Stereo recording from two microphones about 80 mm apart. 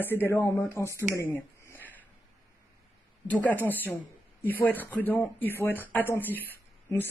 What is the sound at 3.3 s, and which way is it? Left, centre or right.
Speech, left.